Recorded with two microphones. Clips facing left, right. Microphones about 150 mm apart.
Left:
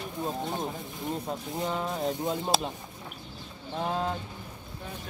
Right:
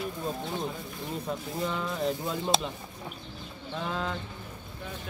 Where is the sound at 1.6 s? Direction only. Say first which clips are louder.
Left 2 dB; 25° left (ahead or behind).